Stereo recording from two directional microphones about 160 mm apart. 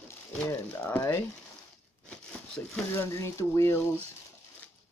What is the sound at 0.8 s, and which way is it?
Speech, 10° left (ahead or behind).